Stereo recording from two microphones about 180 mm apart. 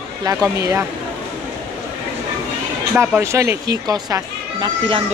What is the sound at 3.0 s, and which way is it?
Speech, 15° right (ahead or behind).